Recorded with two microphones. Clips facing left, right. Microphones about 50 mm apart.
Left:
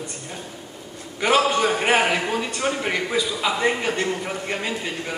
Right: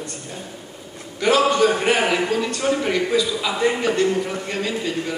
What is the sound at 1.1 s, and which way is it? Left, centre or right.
A man's voice, centre.